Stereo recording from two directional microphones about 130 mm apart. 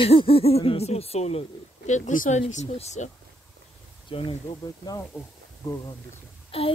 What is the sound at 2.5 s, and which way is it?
Speech, 60° left (ahead or behind).